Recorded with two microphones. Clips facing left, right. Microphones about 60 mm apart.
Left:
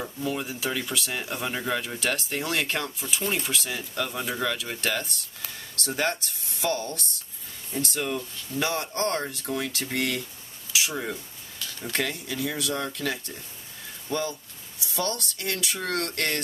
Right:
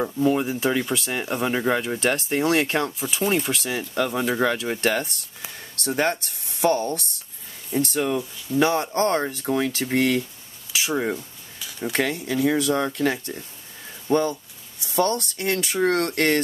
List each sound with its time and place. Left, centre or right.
0.0 s speech: right
0.7 s speech: right
3.0 s speech: centre
3.5 s speech: right
8.0 s speech: centre
8.5 s speech: right